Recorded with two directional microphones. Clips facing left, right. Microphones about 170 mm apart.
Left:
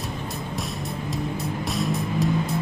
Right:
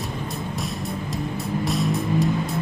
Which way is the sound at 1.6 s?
Centre (ahead or behind).